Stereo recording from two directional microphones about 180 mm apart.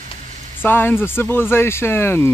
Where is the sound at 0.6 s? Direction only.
10° left (ahead or behind).